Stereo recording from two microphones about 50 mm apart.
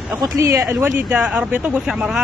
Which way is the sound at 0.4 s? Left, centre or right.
Right.